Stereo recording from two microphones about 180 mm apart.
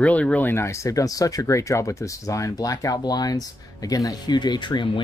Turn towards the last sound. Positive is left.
turn(degrees=25)  # may be behind; listen again after turning